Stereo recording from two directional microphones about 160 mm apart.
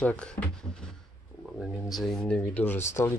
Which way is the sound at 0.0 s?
5° left (ahead or behind).